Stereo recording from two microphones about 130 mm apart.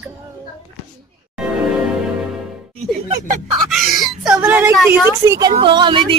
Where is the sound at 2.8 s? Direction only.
55° right (ahead or behind).